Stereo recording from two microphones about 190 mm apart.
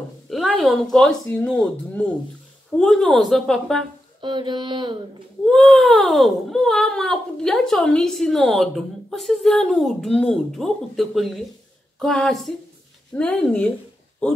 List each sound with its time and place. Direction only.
0.3 s speech: centre (ahead or behind)
4.2 s a sound: 25° right (ahead or behind)
5.4 s speech: centre (ahead or behind)